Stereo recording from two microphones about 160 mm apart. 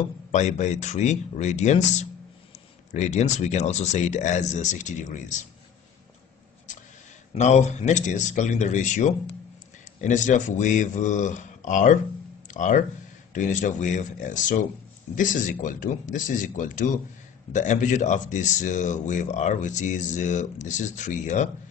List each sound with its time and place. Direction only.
0.3 s speech: 45° left (ahead or behind)
7.3 s speech: 45° left (ahead or behind)